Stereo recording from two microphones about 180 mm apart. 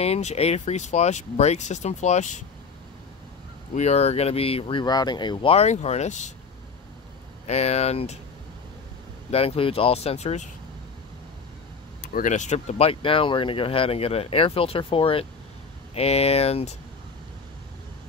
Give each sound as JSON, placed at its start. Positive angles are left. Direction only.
{"t": 0.0, "sound": "speech", "side_deg": 35}
{"t": 3.7, "sound": "speech", "side_deg": 35}
{"t": 7.4, "sound": "speech", "side_deg": 35}
{"t": 9.3, "sound": "speech", "side_deg": 35}
{"t": 12.0, "sound": "speech", "side_deg": 50}